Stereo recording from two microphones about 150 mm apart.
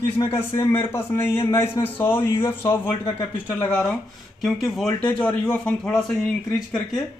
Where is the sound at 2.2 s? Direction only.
35° left (ahead or behind).